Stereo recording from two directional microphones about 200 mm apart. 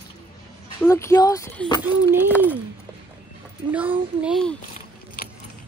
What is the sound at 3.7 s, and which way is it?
Speech, 5° right (ahead or behind).